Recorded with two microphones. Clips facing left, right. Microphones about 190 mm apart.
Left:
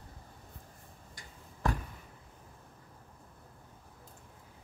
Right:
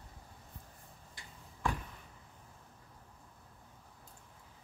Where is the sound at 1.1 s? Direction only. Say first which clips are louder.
Left 2 dB; 40° left (ahead or behind).